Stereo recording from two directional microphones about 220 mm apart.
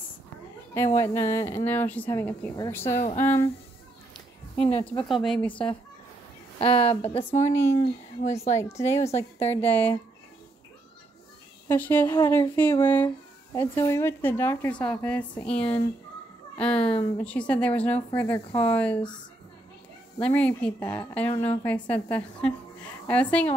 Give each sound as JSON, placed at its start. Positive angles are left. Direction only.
{"t": 0.7, "sound": "a woman's voice", "side_deg": 15}
{"t": 2.9, "sound": "speech", "side_deg": 30}
{"t": 5.0, "sound": "speech", "side_deg": 0}
{"t": 6.6, "sound": "a woman's voice", "side_deg": 25}
{"t": 8.6, "sound": "a woman's voice", "side_deg": 15}
{"t": 11.6, "sound": "a woman's voice", "side_deg": 10}
{"t": 20.2, "sound": "a woman's voice", "side_deg": 5}